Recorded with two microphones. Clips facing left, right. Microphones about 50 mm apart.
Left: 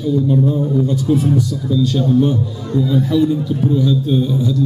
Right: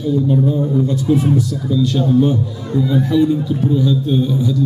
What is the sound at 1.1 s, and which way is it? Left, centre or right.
A man's voice, centre.